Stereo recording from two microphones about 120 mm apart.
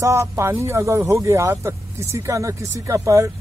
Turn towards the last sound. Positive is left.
turn(degrees=-25)  # may be behind; listen again after turning